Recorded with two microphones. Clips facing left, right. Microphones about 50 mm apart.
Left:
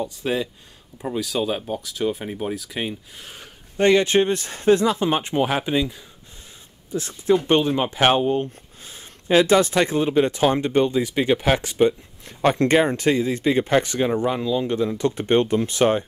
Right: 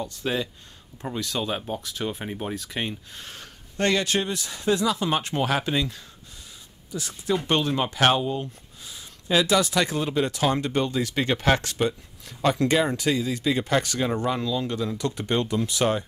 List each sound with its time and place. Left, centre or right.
0.1 s speech: centre; by 5.1 s left
5.1 s speech: centre
6.9 s speech: left
7.4 s speech: centre
8.3 s speech: left; by 11.9 s centre
12.3 s speech: left